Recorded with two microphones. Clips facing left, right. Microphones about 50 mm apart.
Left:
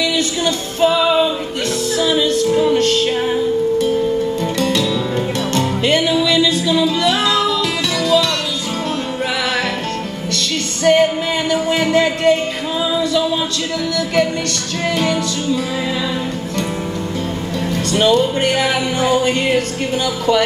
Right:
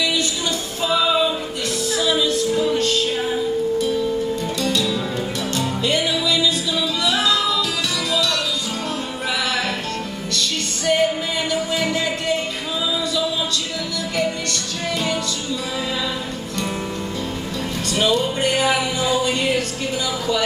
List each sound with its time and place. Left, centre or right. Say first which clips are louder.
0.7 s music: left 5 dB; left
10.3 s music: left 2 dB; left
17.9 s music: left 5 dB; left